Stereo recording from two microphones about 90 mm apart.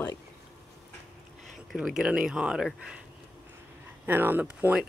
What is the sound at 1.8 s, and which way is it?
Speech, 10° right (ahead or behind).